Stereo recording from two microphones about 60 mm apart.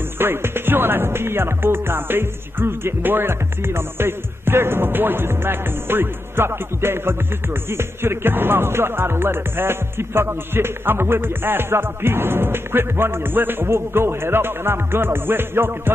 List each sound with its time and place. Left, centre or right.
0.2 s music: right